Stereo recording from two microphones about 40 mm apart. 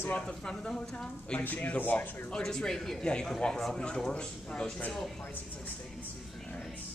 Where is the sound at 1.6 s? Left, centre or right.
Left.